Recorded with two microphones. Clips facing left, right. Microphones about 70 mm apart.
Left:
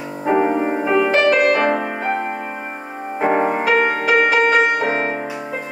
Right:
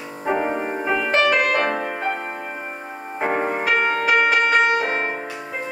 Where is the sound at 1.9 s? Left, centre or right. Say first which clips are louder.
Left 3 dB; left.